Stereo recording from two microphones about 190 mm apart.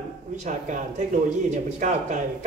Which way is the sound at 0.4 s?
40° right (ahead or behind).